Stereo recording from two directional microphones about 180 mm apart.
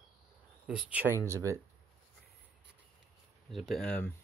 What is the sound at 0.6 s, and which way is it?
Speech, 5° right (ahead or behind).